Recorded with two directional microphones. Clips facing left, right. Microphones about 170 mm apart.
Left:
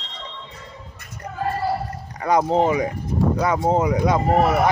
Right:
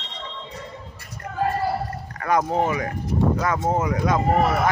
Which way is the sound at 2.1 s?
15° left (ahead or behind).